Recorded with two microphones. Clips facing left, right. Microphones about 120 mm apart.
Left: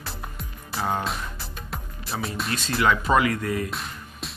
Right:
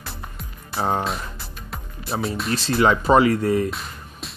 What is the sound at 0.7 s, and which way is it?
Speech, 35° right (ahead or behind).